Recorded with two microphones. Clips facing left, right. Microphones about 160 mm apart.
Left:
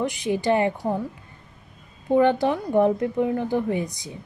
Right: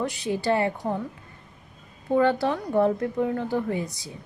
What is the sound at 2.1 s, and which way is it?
A woman's voice, 15° left (ahead or behind).